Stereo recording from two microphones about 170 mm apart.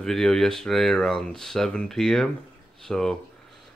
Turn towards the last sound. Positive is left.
turn(degrees=0)  # may be behind; listen again after turning